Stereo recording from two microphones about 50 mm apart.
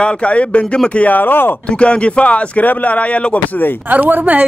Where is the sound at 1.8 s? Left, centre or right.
Left.